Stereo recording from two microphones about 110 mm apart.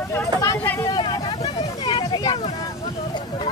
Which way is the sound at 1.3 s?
55° left (ahead or behind).